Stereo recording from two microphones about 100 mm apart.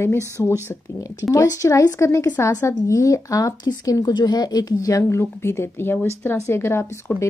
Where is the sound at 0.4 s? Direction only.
30° left (ahead or behind).